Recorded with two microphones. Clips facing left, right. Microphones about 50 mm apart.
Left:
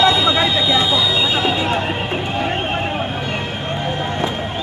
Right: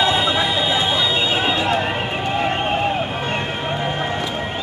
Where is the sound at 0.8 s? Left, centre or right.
Right.